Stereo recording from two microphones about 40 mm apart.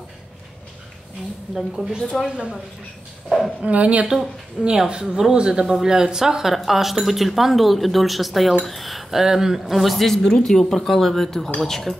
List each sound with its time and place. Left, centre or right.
1.5 s speech: centre
2.2 s a woman's voice: right
3.3 s a sound: centre
3.6 s speech: right
4.7 s a woman's voice: right
9.8 s speech: centre